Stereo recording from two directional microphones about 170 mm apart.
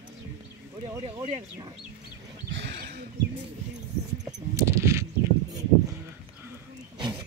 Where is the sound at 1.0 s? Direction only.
40° right (ahead or behind).